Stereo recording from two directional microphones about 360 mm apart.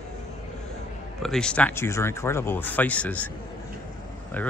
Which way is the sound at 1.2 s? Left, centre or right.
Centre.